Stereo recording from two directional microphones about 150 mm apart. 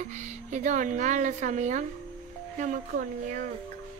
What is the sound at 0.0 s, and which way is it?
Speech, 55° right (ahead or behind).